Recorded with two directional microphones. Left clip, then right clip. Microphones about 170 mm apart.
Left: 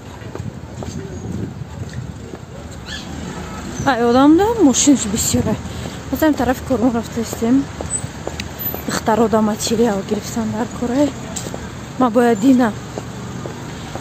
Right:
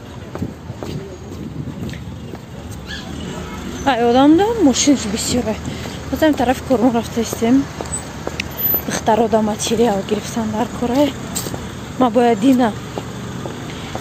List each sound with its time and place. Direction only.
3.8 s speech: 20° left (ahead or behind)
8.4 s a woman's voice: 20° left (ahead or behind)
12.0 s speech: 20° left (ahead or behind)